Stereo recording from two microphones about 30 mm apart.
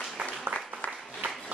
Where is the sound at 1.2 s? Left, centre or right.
Right.